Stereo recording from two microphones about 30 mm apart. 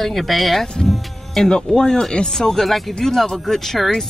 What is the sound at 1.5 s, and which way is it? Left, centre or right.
Speech, left.